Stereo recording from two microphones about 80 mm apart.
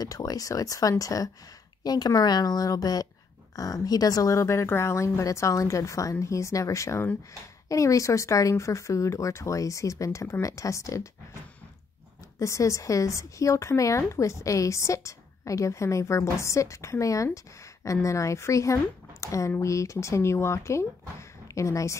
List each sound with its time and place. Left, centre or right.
0.0 s a woman's voice: left
12.4 s speech: left